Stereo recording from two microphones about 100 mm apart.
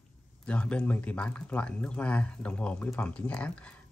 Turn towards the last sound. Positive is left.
turn(degrees=10)  # may be behind; listen again after turning